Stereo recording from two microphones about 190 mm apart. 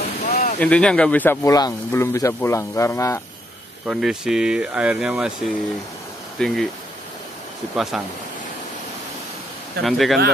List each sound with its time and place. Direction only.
0.2 s a sound: 50° left (ahead or behind)
0.6 s speech: 5° left (ahead or behind)
3.8 s speech: 5° right (ahead or behind)
7.7 s speech: centre (ahead or behind)
9.8 s speech: centre (ahead or behind)